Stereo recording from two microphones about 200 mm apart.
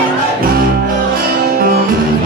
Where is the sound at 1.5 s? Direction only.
50° right (ahead or behind).